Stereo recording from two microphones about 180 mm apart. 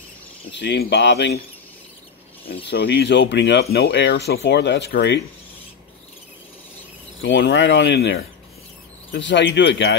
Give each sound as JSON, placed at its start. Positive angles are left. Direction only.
{"t": 0.5, "sound": "speech", "side_deg": 80}
{"t": 2.6, "sound": "speech", "side_deg": 75}
{"t": 7.2, "sound": "speech", "side_deg": 90}
{"t": 9.1, "sound": "speech", "side_deg": 90}